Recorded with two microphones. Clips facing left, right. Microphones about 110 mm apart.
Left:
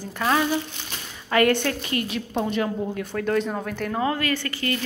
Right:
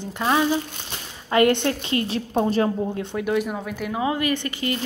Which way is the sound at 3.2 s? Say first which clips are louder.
Even; 10° right (ahead or behind).